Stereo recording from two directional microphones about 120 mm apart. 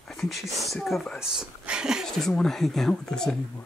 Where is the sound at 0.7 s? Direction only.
Centre (ahead or behind).